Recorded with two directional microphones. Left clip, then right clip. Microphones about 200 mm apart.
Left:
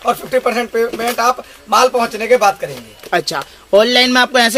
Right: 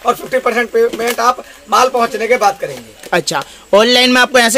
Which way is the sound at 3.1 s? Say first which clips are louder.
Right 2 dB; 15° right (ahead or behind).